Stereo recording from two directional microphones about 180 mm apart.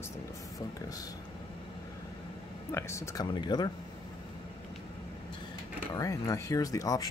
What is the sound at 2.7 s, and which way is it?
Speech, 15° left (ahead or behind).